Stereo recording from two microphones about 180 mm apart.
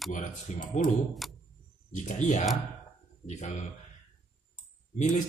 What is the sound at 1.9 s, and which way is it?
Speech, 40° left (ahead or behind).